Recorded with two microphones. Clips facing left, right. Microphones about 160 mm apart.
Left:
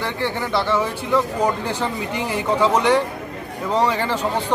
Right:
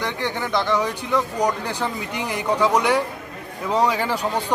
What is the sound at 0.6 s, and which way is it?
Speech, 15° right (ahead or behind).